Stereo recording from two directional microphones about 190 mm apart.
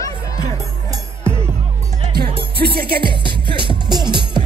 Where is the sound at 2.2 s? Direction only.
55° right (ahead or behind).